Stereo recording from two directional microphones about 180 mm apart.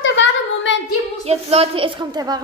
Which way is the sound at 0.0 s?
90° left.